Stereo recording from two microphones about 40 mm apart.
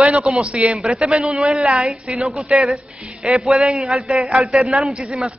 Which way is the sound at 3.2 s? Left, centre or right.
Centre.